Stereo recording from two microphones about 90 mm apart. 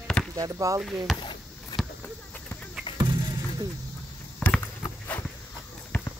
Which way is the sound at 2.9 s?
65° left (ahead or behind).